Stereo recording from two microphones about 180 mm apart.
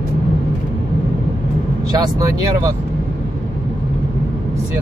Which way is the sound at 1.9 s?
20° right (ahead or behind).